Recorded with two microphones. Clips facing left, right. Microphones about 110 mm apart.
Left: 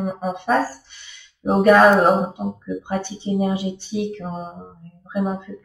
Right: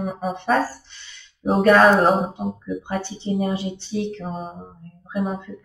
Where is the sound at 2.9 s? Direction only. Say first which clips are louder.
Left 2 dB; 15° left (ahead or behind).